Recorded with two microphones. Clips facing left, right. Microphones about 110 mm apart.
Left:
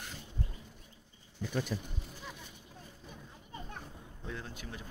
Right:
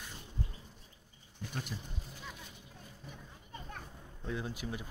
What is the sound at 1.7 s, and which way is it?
Speech, 90° left.